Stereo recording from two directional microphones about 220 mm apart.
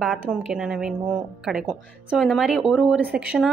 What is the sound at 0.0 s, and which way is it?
Speech, centre (ahead or behind).